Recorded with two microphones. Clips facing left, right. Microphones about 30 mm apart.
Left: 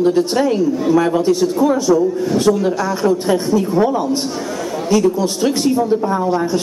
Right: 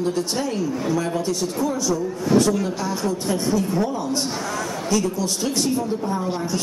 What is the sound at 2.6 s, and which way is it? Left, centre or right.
A man's voice, left.